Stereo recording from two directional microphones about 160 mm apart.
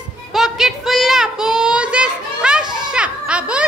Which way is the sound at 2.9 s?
5° right (ahead or behind).